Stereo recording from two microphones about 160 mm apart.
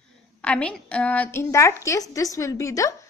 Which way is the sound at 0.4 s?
5° left (ahead or behind).